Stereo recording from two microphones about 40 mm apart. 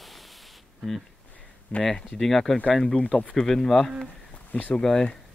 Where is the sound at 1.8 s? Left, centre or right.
Centre.